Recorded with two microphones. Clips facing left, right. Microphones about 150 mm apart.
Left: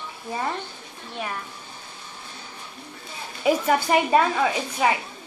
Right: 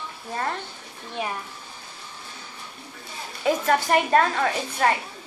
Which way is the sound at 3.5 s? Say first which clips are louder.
Left 1 dB; 10° left (ahead or behind).